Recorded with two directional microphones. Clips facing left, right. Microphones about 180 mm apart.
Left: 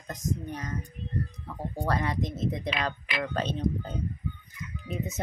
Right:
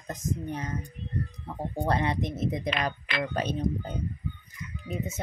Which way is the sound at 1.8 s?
25° right (ahead or behind).